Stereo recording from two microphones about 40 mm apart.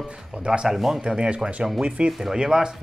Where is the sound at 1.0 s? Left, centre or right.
Right.